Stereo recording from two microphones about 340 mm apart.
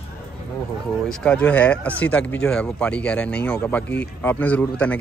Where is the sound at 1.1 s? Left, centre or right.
Centre.